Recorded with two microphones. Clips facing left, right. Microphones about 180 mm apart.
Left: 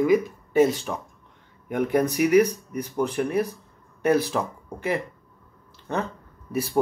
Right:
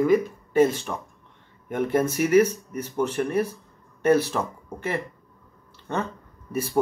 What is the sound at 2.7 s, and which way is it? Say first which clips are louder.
Speech: even; centre (ahead or behind).